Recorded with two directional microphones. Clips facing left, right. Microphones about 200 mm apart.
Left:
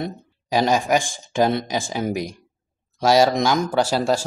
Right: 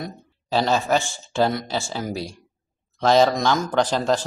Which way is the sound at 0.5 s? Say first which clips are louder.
Left 2 dB; 15° left (ahead or behind).